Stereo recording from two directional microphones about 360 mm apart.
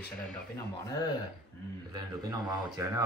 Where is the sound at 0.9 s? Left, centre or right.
Centre.